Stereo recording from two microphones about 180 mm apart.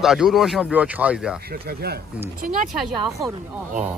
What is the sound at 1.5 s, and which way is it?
Speech, 60° right (ahead or behind).